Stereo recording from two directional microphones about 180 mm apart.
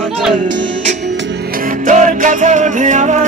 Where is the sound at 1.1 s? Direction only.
80° right; by 3.2 s 45° right (ahead or behind).